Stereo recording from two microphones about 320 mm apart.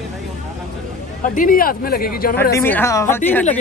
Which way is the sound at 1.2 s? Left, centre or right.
Left.